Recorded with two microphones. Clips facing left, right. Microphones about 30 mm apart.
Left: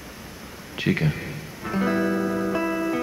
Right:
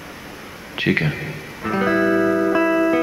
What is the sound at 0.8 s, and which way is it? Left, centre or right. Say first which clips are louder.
Speech: right 4 dB; right.